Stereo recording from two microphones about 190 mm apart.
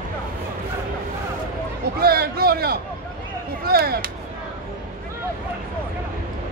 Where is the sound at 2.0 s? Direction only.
55° right (ahead or behind).